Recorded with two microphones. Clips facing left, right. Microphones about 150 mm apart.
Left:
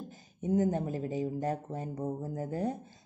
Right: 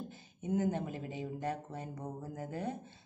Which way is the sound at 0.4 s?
40° left (ahead or behind).